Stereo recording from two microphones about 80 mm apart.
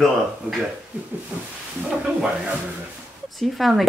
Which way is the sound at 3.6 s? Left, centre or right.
Centre.